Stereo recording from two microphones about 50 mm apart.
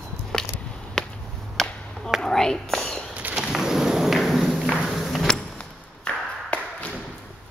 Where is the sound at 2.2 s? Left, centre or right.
Centre.